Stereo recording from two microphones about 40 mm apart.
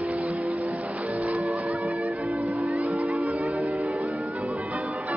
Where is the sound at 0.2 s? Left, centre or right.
Right.